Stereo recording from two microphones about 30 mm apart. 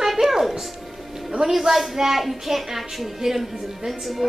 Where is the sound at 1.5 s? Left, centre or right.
Centre.